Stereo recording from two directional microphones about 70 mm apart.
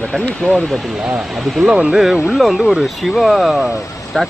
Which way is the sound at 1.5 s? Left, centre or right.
Centre.